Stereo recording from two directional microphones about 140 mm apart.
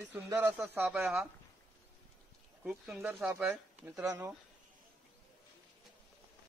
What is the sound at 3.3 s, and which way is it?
Speech, 15° right (ahead or behind).